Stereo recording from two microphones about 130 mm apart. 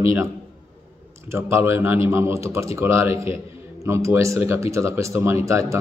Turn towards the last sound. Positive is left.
turn(degrees=-25)  # may be behind; listen again after turning